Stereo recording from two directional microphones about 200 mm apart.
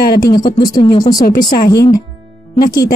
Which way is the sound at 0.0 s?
50° left (ahead or behind).